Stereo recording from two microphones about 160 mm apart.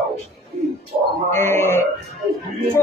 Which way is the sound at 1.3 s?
15° left (ahead or behind).